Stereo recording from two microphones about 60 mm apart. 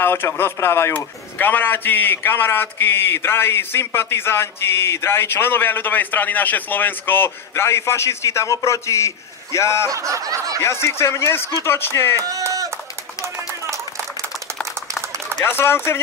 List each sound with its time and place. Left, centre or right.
0.0 s speech: left
0.9 s a man's voice: left
7.2 s a man's voice: left
9.8 s snicker: right
10.6 s speech: left
12.3 s speech: right
15.4 s speech: left